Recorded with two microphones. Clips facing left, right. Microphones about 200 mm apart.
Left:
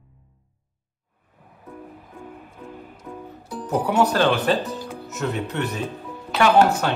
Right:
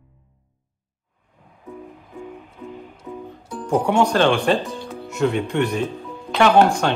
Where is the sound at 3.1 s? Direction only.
10° right (ahead or behind).